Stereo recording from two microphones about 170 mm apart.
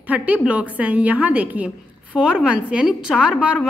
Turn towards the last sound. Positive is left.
turn(degrees=-5)  # may be behind; listen again after turning